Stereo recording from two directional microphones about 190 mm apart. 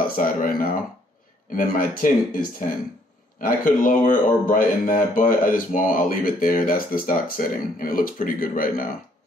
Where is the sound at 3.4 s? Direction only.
45° left (ahead or behind).